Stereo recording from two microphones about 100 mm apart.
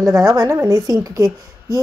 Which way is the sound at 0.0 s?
35° right (ahead or behind).